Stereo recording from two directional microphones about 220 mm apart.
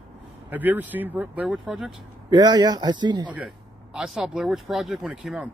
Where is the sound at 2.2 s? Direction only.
20° right (ahead or behind).